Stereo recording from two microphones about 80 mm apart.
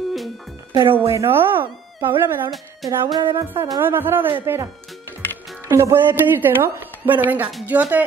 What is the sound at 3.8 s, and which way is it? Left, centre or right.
Speech, right.